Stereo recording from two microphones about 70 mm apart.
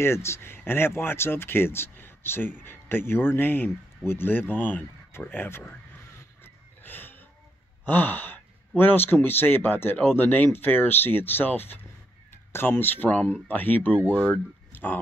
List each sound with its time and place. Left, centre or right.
0.0 s speech: left
6.4 s a sound: left
7.8 s speech: left